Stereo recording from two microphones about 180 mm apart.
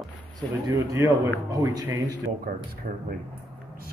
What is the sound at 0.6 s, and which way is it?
Speech, 15° right (ahead or behind).